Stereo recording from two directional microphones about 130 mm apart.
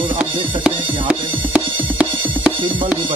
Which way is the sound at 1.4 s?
10° right (ahead or behind).